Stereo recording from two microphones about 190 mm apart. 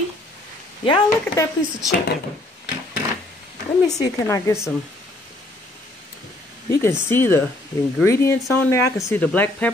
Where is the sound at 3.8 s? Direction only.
15° left (ahead or behind).